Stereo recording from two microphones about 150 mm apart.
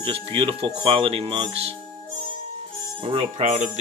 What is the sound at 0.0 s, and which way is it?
Speech, 35° right (ahead or behind).